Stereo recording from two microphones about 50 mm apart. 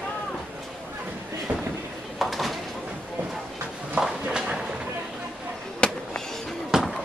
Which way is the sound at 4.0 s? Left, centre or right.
Centre.